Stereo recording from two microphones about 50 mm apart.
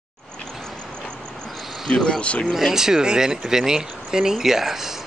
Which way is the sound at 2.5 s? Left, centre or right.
Centre.